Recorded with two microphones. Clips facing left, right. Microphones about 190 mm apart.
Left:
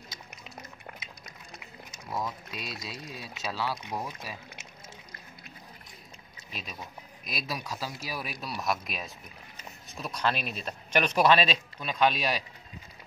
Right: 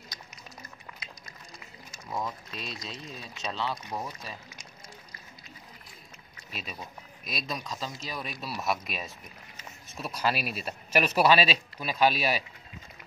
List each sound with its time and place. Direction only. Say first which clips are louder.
0.9 s a sound: left 2 dB; 50° left (ahead or behind)
2.0 s speech: even; 5° left (ahead or behind)
6.5 s speech: right 1 dB; centre (ahead or behind)